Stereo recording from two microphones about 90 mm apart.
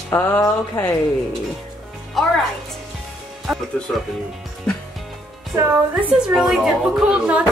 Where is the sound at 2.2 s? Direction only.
Centre (ahead or behind).